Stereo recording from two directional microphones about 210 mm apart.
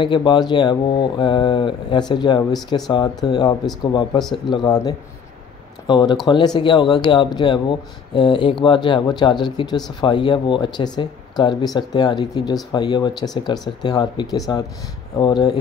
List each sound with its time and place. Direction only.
0.0 s speech: 20° left (ahead or behind)